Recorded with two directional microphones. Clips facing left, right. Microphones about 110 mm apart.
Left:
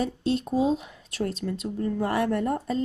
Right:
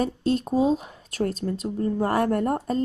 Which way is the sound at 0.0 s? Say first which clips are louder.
Right 2 dB; 45° right (ahead or behind).